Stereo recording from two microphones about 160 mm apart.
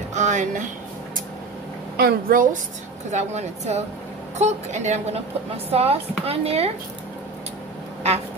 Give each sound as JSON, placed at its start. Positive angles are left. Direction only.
{"t": 0.1, "sound": "a sound", "side_deg": -50}
{"t": 2.0, "sound": "a woman's voice", "side_deg": -70}
{"t": 3.1, "sound": "a woman's voice", "side_deg": -45}